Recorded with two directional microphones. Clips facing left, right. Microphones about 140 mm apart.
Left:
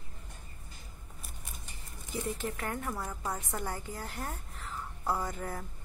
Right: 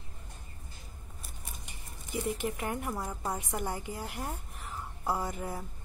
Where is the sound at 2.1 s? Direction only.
15° right (ahead or behind).